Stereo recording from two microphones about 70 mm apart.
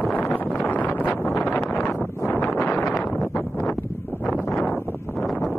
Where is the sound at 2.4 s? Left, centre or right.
Centre.